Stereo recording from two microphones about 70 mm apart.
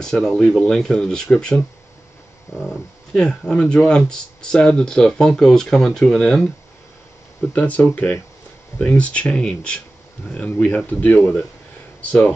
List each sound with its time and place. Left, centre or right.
0.0 s speech: centre
2.6 s speech: centre
7.5 s speech: left